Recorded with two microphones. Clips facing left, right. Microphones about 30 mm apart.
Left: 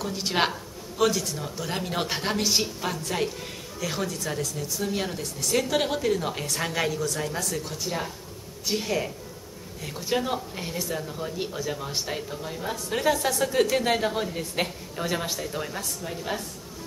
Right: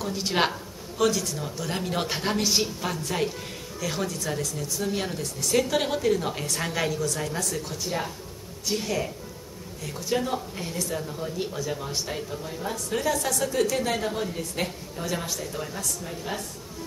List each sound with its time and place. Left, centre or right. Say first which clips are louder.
0.0 s a woman's voice: even; centre